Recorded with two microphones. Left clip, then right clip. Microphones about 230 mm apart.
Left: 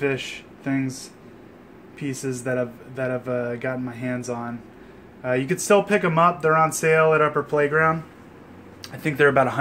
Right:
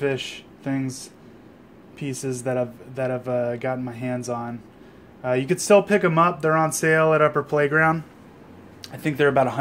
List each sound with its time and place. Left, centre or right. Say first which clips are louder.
0.0 s speech: even; right
8.8 s speech: left 2 dB; centre